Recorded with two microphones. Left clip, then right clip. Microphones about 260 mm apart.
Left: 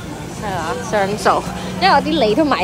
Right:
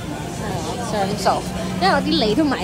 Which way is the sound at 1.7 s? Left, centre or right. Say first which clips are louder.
Left 5 dB; centre.